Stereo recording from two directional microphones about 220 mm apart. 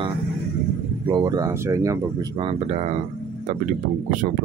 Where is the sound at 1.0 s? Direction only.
20° right (ahead or behind).